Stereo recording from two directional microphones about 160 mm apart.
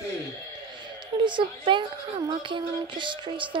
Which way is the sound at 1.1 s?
30° right (ahead or behind).